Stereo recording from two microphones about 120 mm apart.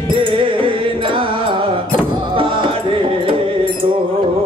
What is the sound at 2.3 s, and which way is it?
Music, 45° right (ahead or behind).